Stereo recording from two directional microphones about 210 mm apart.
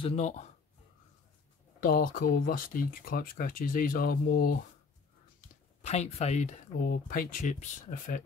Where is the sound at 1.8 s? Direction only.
40° left (ahead or behind).